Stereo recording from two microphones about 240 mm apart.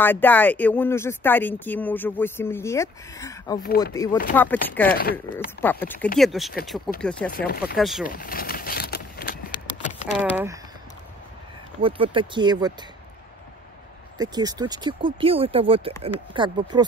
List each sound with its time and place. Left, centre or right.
0.0 s speech: centre
7.2 s speech: left
7.7 s speech: centre
8.0 s a sound: left
10.1 s speech: centre
11.8 s speech: right
14.1 s speech: centre